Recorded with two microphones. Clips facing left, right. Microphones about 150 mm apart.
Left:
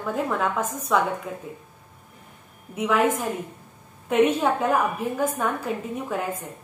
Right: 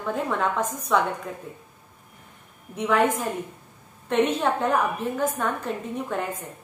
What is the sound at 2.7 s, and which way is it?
A woman's voice, 5° left (ahead or behind).